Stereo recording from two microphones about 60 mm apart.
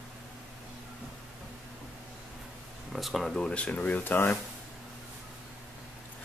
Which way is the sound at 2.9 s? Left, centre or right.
Centre.